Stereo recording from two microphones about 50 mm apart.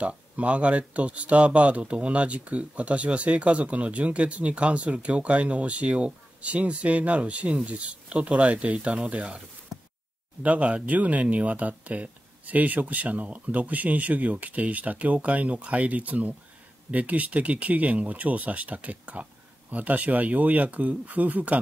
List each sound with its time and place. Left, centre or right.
0.0 s speech: right
10.4 s speech: right